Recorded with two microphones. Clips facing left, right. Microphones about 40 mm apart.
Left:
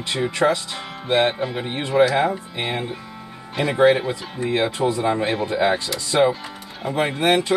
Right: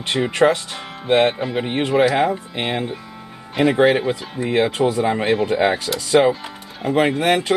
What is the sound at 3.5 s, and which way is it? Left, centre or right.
Speech, right.